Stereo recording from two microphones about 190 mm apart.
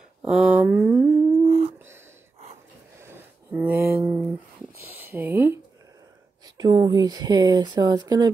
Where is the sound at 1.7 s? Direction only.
15° right (ahead or behind).